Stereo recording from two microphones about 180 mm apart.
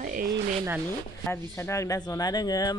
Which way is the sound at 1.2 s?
15° left (ahead or behind).